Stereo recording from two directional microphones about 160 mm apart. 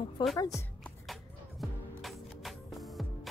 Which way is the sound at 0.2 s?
30° left (ahead or behind).